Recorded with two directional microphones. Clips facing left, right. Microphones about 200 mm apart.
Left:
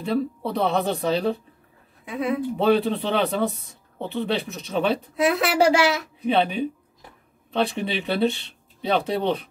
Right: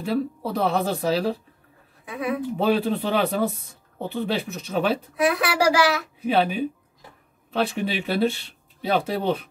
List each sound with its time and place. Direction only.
0.0 s speech: 5° right (ahead or behind)
2.0 s a child's voice: 25° left (ahead or behind)
2.5 s speech: 5° right (ahead or behind)
5.1 s a child's voice: 25° left (ahead or behind)
6.2 s speech: 5° right (ahead or behind)